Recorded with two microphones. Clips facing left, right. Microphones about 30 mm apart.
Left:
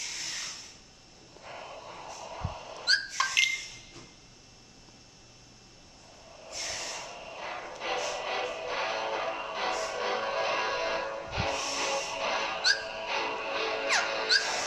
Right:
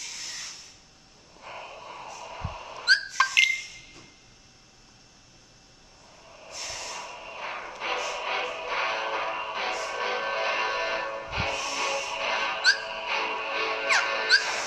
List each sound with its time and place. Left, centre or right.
1.4 s dog: centre
6.2 s snort: centre
6.5 s snort: centre